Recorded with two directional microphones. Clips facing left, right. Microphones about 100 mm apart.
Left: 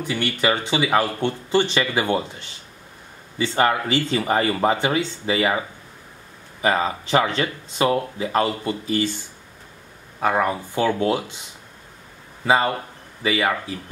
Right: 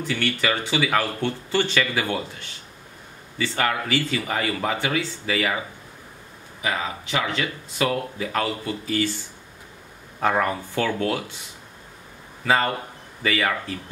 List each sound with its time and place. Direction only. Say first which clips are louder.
0.0 s speech: left 2 dB; 15° left (ahead or behind)
6.6 s speech: left 6 dB; 35° left (ahead or behind)
10.2 s speech: left 1 dB; 10° left (ahead or behind)
12.4 s speech: left 2 dB; 15° left (ahead or behind)